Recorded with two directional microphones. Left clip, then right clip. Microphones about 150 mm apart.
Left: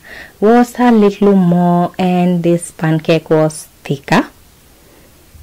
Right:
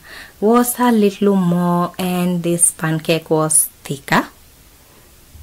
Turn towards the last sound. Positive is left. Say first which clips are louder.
# left 3 dB
turn(degrees=35)  # may be behind; listen again after turning